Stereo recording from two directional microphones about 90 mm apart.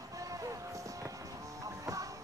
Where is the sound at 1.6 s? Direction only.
40° right (ahead or behind).